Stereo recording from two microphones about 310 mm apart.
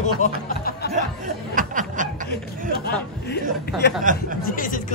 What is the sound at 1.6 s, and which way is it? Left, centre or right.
Snicker, right.